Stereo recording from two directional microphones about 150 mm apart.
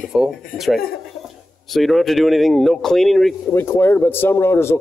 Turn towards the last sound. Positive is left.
turn(degrees=15)  # may be behind; listen again after turning